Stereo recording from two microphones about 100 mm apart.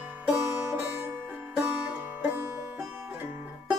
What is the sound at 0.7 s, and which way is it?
Music, 25° right (ahead or behind).